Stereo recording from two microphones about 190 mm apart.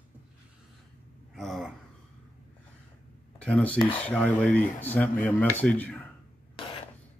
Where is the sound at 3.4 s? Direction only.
5° left (ahead or behind).